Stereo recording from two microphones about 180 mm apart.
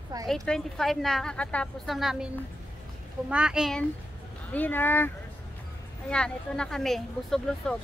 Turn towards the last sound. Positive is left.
turn(degrees=0)  # may be behind; listen again after turning